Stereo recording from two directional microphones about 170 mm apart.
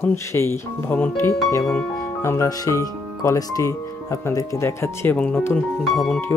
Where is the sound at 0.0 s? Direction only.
15° left (ahead or behind).